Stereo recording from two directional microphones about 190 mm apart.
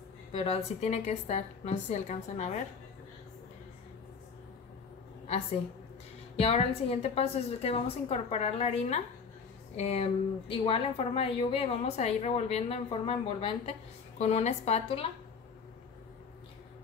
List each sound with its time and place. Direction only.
0.3 s a woman's voice: 30° left (ahead or behind)
6.3 s a woman's voice: 30° left (ahead or behind)